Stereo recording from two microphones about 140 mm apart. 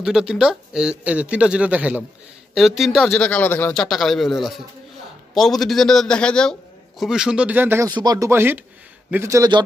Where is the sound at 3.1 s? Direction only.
10° left (ahead or behind); by 7.9 s 15° right (ahead or behind).